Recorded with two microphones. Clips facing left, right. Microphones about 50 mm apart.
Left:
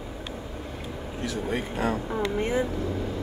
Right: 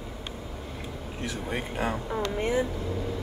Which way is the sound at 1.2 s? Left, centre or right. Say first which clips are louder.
Left 3 dB; right.